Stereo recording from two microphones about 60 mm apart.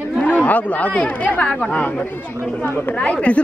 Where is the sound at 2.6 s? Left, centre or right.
Left.